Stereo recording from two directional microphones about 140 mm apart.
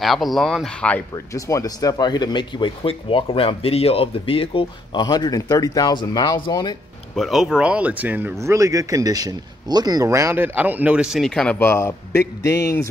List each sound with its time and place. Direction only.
0.0 s speech: centre (ahead or behind)
1.3 s speech: 25° left (ahead or behind); by 5.0 s 40° left (ahead or behind)
5.0 s speech: 30° left (ahead or behind)
7.2 s speech: centre (ahead or behind)
11.5 s speech: 15° left (ahead or behind)